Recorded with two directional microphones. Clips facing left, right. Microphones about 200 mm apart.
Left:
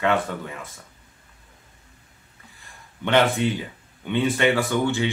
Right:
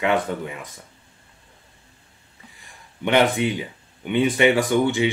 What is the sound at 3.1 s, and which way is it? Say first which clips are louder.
Speech: right 1 dB; 15° right (ahead or behind).